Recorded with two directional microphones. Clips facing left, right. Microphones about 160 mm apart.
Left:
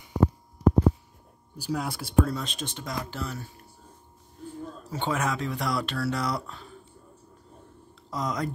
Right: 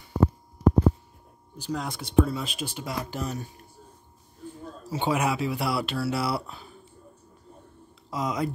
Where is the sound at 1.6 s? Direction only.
5° left (ahead or behind); by 3.5 s 15° right (ahead or behind).